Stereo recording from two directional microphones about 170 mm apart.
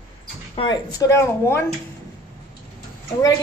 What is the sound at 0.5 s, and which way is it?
Speech, 25° left (ahead or behind).